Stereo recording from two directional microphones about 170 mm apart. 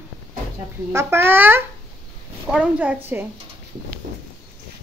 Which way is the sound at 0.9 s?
15° right (ahead or behind).